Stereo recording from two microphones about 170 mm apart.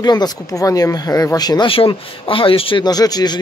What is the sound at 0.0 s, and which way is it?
Speech, 25° left (ahead or behind).